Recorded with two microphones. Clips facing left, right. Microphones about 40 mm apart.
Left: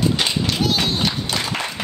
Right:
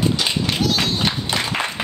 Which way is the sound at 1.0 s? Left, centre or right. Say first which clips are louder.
Right 1 dB; centre.